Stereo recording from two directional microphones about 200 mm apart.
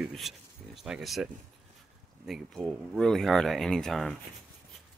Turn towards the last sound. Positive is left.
turn(degrees=0)  # may be behind; listen again after turning